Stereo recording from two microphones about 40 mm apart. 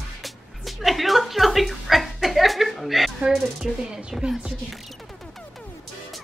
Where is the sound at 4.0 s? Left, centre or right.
Centre.